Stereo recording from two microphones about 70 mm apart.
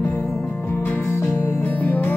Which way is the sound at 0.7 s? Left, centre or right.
Left.